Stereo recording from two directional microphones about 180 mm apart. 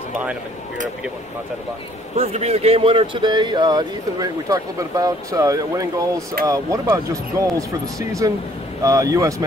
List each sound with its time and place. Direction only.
2.1 s speech: 35° right (ahead or behind); by 9.3 s 20° right (ahead or behind)